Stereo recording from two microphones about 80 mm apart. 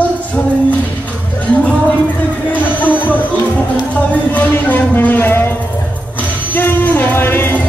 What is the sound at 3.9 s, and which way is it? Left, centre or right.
Speech, left.